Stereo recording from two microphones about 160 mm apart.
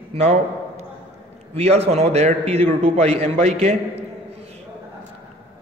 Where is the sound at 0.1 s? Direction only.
45° right (ahead or behind).